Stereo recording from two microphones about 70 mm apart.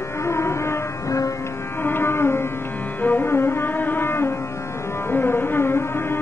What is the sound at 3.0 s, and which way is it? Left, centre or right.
Music, left.